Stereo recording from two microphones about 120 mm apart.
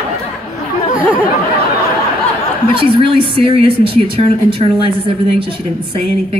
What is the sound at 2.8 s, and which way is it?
Speech, 45° right (ahead or behind).